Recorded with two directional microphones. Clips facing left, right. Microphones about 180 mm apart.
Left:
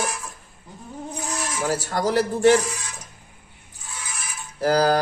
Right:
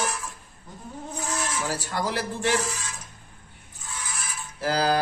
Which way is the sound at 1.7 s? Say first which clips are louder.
Left 10 dB; 45° left (ahead or behind).